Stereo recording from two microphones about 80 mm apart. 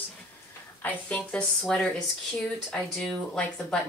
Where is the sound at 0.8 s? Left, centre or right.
Centre.